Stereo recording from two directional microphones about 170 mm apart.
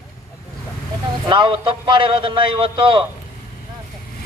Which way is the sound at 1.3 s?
30° right (ahead or behind).